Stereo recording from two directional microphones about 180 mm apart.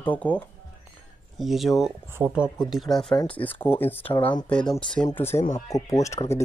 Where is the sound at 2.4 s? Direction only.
20° left (ahead or behind).